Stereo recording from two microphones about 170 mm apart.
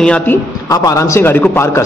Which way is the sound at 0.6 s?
20° left (ahead or behind).